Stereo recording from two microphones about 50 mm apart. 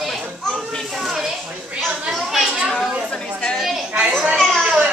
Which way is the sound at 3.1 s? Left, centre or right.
Centre.